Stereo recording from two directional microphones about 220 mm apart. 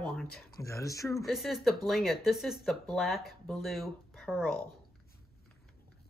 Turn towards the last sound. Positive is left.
turn(degrees=0)  # may be behind; listen again after turning